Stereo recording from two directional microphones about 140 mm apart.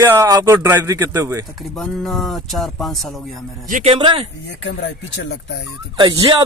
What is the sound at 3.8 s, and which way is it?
Speech, 40° right (ahead or behind).